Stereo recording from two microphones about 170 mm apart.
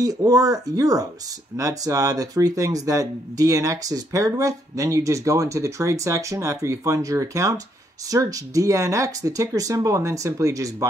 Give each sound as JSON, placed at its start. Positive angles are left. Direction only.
{"t": 0.0, "sound": "speech", "side_deg": -20}